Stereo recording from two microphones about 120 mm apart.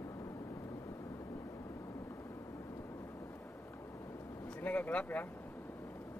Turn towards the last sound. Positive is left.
turn(degrees=10)  # may be behind; listen again after turning